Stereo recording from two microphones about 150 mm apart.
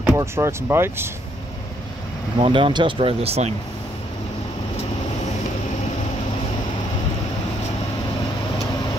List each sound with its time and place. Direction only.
0.0 s speech: 15° right (ahead or behind)
2.3 s speech: 35° right (ahead or behind)